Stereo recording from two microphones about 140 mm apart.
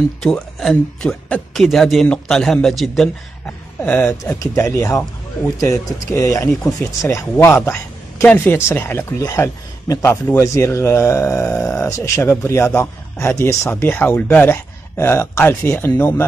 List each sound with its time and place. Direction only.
0.2 s a man's voice: 5° left (ahead or behind)
3.8 s a man's voice: 15° left (ahead or behind)